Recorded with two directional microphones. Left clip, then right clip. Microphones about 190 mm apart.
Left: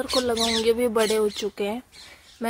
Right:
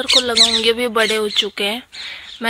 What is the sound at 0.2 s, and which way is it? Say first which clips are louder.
Speech: right 9 dB; centre (ahead or behind).